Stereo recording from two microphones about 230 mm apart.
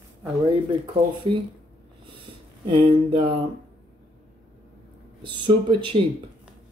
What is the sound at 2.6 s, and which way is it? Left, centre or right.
Speech, right.